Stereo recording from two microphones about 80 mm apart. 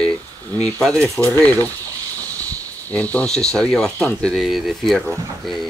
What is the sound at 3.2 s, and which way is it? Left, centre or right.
Speech, centre.